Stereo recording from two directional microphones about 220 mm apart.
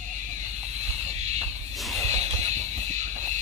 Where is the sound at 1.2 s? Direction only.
30° right (ahead or behind).